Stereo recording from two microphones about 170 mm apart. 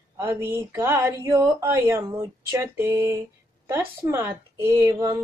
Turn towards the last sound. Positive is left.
turn(degrees=-20)  # may be behind; listen again after turning